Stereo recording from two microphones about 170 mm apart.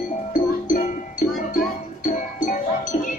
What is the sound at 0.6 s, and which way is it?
Music, 50° left (ahead or behind).